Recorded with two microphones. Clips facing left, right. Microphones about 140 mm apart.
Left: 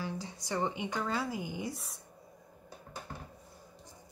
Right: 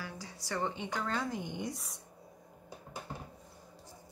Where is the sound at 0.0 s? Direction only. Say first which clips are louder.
Left 5 dB; 20° left (ahead or behind).